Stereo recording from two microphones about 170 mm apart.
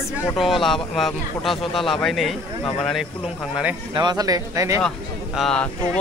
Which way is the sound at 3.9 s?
25° right (ahead or behind).